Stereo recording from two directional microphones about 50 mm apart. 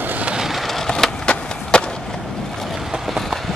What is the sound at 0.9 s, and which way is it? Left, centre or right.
Skateboard, centre.